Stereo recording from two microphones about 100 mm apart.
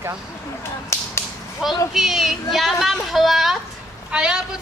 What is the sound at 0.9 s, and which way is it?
Finger snapping, 25° left (ahead or behind).